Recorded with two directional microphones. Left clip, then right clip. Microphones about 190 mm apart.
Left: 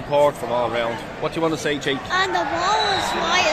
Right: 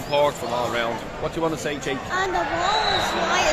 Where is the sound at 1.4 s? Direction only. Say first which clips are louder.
Left 4 dB; 40° left (ahead or behind).